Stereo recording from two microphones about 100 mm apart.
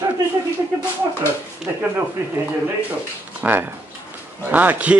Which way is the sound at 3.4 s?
20° right (ahead or behind).